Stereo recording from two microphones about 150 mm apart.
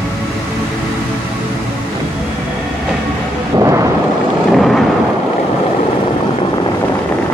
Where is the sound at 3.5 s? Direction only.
20° right (ahead or behind).